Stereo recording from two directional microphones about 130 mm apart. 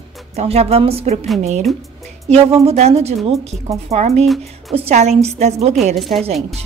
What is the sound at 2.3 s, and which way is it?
A woman's voice, 55° right (ahead or behind).